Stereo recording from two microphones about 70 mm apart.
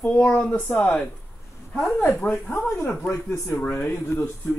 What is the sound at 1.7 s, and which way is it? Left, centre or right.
Speech, centre.